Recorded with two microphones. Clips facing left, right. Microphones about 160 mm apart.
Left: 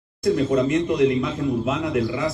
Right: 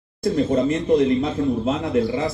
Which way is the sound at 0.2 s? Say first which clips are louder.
Even; 30° right (ahead or behind).